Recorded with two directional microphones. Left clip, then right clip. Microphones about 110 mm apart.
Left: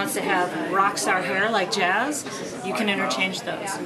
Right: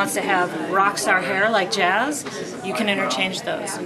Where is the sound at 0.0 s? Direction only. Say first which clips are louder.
Right 3 dB; 25° right (ahead or behind).